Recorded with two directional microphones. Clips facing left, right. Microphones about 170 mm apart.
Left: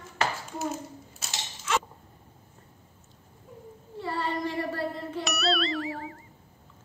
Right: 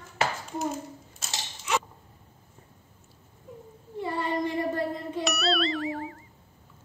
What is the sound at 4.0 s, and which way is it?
Child singing, 20° right (ahead or behind).